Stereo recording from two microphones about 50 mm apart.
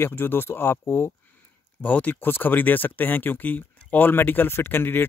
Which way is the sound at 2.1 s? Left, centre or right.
Left.